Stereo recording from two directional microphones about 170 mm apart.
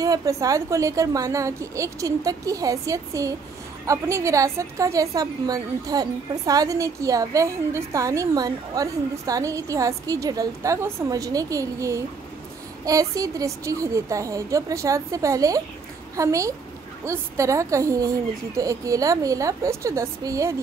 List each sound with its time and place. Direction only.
0.0 s a woman's voice: 20° right (ahead or behind)